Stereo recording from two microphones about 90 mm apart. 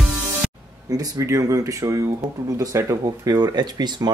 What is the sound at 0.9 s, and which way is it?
Speech, 40° right (ahead or behind).